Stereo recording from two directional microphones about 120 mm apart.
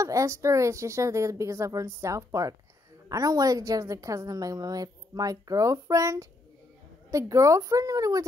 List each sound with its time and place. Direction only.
0.0 s a woman's voice: 25° right (ahead or behind)